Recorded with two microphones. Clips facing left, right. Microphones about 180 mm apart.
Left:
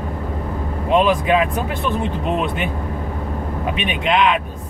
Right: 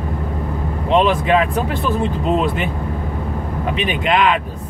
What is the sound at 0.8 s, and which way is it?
Speech, 5° left (ahead or behind).